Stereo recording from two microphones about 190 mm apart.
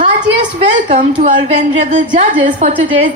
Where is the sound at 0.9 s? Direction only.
40° right (ahead or behind).